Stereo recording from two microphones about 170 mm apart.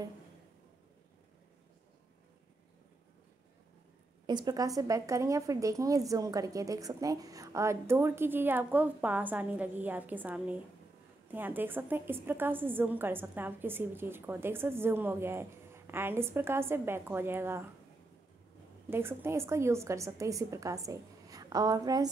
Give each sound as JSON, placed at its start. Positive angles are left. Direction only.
{"t": 4.3, "sound": "a woman's voice", "side_deg": -25}
{"t": 18.9, "sound": "speech", "side_deg": -15}